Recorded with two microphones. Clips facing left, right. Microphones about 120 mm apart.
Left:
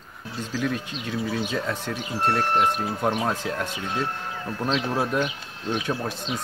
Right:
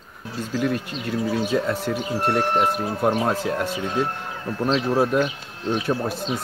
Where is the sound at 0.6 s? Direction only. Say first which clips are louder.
Right 4 dB; 5° right (ahead or behind).